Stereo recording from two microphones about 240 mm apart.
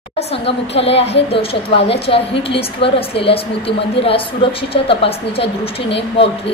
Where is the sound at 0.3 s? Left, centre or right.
Left.